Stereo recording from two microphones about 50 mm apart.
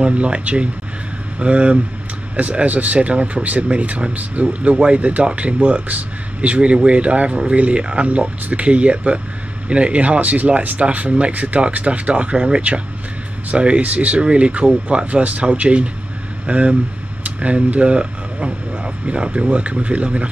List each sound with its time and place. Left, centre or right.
0.0 s speech: right